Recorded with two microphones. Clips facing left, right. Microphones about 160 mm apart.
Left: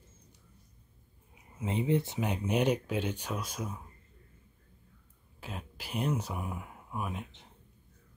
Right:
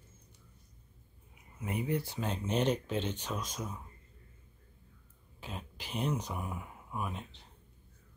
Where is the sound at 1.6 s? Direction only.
25° left (ahead or behind); by 3.8 s 10° left (ahead or behind).